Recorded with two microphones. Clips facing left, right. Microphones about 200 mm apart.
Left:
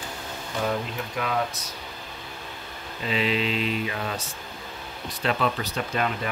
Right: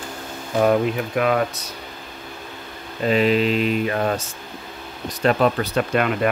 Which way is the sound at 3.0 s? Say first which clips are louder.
Right 8 dB; 50° right (ahead or behind).